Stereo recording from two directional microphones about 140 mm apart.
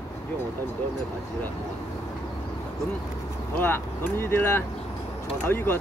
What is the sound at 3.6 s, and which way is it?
Speech, 15° left (ahead or behind).